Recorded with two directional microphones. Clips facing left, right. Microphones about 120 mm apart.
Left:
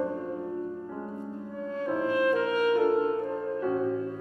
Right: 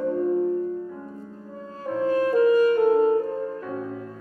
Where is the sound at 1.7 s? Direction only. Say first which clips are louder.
Right 4 dB; 35° right (ahead or behind).